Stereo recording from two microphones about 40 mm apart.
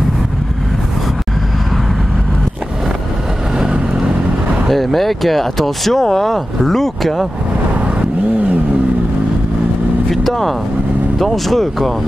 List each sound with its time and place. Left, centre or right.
3.5 s vehicle: right
4.6 s speech: centre
10.1 s speech: centre